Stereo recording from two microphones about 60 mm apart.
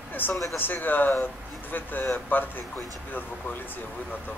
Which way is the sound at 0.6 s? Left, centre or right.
Left.